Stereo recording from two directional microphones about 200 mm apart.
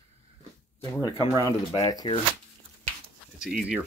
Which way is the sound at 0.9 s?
20° left (ahead or behind).